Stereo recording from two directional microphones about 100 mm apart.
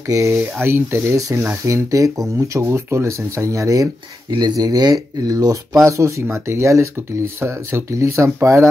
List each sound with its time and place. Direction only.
0.1 s speech: 30° right (ahead or behind)
4.3 s speech: 45° right (ahead or behind); by 8.6 s 30° right (ahead or behind)